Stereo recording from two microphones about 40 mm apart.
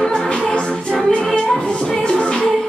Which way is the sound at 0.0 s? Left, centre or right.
Left.